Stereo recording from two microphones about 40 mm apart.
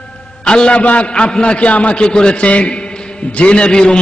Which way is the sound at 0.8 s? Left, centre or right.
Left.